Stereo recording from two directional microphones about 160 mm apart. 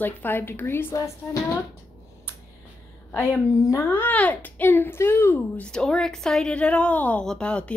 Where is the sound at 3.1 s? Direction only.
15° left (ahead or behind).